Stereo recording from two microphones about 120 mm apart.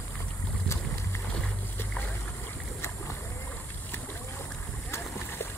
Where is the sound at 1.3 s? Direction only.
15° left (ahead or behind).